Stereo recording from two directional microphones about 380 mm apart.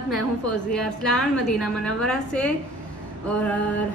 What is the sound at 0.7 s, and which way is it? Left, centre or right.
A woman's voice, centre.